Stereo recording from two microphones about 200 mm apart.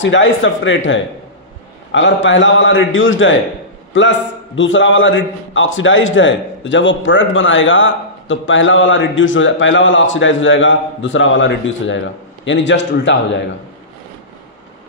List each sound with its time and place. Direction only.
0.0 s a man's voice: 70° left (ahead or behind)